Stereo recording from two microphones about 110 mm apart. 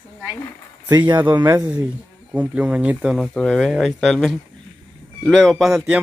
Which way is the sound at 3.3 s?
5° left (ahead or behind).